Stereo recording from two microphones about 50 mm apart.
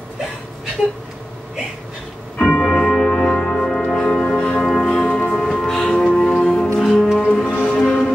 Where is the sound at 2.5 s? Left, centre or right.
Centre.